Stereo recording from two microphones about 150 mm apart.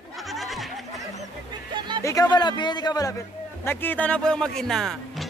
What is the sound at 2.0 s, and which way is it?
Speech, 20° left (ahead or behind).